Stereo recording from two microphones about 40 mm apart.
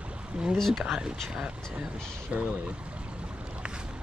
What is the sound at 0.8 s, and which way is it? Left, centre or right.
Speech, centre.